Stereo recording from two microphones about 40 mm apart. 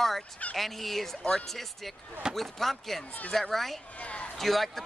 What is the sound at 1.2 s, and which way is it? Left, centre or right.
Speech, centre.